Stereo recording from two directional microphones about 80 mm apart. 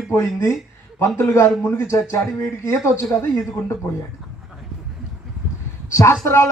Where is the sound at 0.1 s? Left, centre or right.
Left.